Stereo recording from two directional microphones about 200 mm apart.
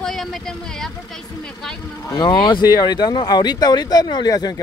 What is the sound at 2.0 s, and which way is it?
Speech, 20° left (ahead or behind).